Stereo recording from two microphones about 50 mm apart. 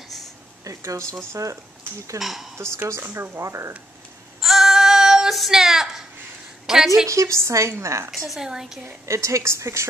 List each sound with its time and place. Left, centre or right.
0.7 s a sound: right
1.1 s a woman's voice: right
2.1 s speech: centre
2.5 s speech: right
4.4 s female singing: centre
5.5 s a sound: centre
7.1 s a woman's voice: right
8.4 s a woman's voice: centre
9.0 s a woman's voice: right